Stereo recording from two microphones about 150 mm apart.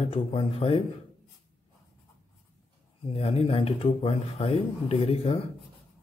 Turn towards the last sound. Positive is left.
turn(degrees=40)  # may be behind; listen again after turning